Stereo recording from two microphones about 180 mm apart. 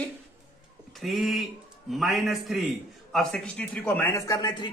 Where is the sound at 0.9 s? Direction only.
Centre (ahead or behind).